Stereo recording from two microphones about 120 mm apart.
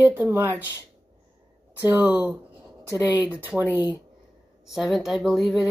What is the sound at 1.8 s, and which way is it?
Speech, 15° right (ahead or behind).